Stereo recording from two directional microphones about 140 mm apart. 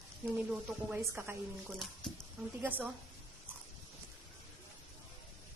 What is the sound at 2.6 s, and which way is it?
Speech, 10° right (ahead or behind).